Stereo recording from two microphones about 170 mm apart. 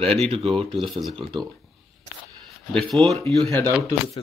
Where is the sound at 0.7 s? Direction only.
Centre (ahead or behind).